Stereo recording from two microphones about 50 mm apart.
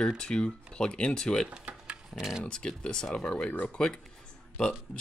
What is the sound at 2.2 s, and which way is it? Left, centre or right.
Speech, centre.